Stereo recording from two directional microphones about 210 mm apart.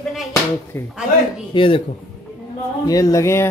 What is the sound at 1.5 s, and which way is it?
Speech, 25° left (ahead or behind).